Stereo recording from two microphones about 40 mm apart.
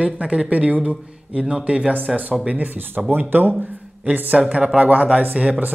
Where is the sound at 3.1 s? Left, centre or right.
Right.